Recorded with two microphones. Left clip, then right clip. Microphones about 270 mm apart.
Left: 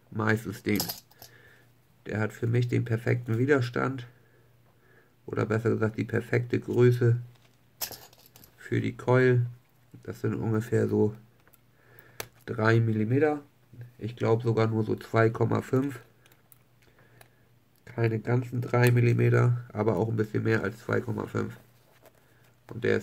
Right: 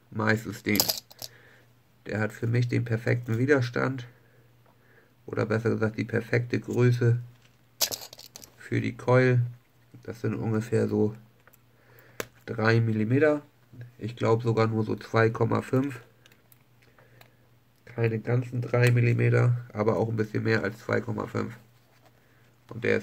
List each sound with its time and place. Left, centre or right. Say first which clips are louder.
0.1 s speech: right 2 dB; centre
2.0 s speech: right 1 dB; centre
5.3 s speech: right 1 dB; centre
8.5 s speech: even; centre
17.8 s speech: right 1 dB; centre